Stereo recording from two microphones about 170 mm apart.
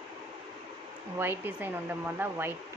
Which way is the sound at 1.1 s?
10° right (ahead or behind).